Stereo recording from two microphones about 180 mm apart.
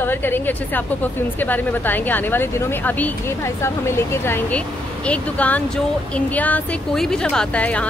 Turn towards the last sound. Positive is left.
turn(degrees=5)  # may be behind; listen again after turning